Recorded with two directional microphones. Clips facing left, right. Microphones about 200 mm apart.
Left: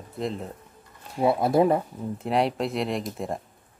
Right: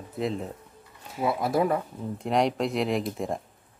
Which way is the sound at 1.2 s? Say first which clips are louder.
Left 4 dB; 25° left (ahead or behind).